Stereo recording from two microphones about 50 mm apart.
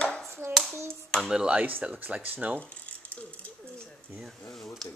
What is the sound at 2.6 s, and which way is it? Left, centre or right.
Speech, left.